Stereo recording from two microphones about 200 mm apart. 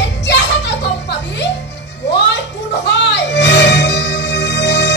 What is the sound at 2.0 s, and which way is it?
Music, 60° left (ahead or behind).